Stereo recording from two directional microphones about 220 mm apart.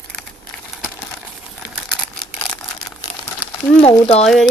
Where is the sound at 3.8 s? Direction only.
25° left (ahead or behind).